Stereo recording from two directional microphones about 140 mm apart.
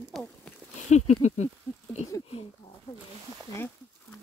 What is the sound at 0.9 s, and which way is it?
Speech, 55° left (ahead or behind).